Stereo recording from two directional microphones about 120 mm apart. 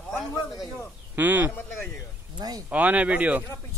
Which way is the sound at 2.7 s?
10° right (ahead or behind).